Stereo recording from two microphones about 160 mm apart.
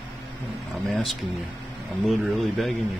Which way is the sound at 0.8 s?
Centre (ahead or behind).